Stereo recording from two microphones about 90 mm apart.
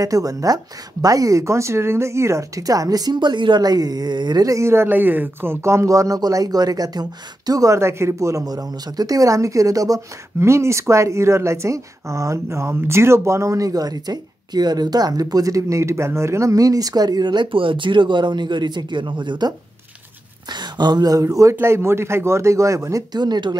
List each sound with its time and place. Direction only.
0.0 s speech: 40° right (ahead or behind)